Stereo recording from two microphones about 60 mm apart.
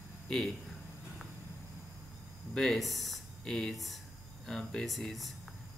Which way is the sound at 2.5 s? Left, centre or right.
Centre.